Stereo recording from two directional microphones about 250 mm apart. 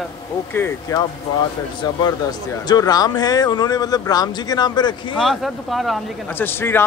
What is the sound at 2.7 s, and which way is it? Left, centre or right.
A man's voice, centre.